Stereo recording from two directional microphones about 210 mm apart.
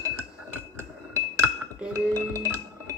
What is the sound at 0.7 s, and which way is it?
Chink, 10° right (ahead or behind).